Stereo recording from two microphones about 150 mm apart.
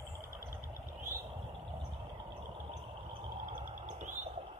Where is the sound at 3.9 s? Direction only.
55° right (ahead or behind).